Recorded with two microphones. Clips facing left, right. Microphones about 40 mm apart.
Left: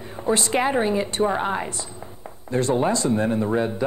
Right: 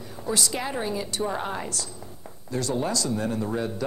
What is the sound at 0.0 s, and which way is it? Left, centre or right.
A man's voice, left.